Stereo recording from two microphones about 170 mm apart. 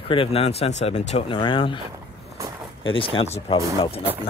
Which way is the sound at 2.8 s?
30° left (ahead or behind).